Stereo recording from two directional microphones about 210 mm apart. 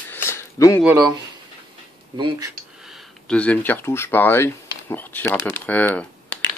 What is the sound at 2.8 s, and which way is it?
Speech, centre (ahead or behind).